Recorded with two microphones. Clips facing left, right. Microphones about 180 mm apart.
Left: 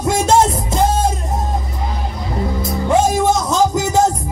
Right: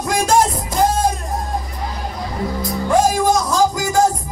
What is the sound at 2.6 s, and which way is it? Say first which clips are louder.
Music: left 1 dB; 25° left (ahead or behind).